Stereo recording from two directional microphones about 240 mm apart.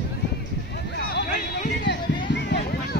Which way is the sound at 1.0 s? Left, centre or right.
Left.